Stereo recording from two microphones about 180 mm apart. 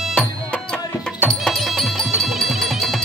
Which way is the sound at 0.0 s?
5° left (ahead or behind).